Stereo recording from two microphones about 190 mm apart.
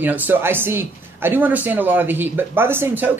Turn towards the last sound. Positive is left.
turn(degrees=-10)  # may be behind; listen again after turning